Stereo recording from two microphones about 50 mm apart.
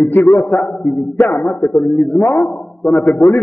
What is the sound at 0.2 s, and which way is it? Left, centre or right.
Speech, left.